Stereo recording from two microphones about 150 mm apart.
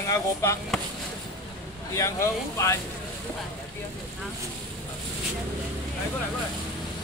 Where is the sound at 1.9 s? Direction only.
20° left (ahead or behind).